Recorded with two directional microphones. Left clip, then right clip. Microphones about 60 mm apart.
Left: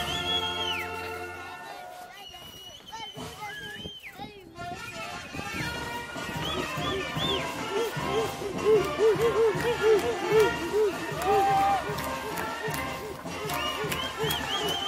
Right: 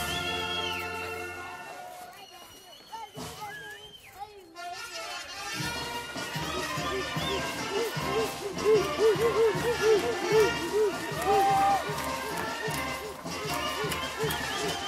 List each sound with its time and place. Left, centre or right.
0.0 s music: right
0.5 s music: right
4.9 s music: right
11.0 s run: right
12.0 s music: right